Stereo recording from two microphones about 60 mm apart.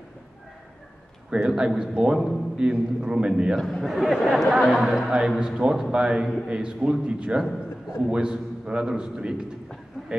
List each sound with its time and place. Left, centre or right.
1.3 s a man's voice: centre
2.1 s speech: centre
2.5 s a man's voice: centre
3.5 s speech: centre
4.8 s a man's voice: centre
6.2 s speech: centre
6.5 s a man's voice: centre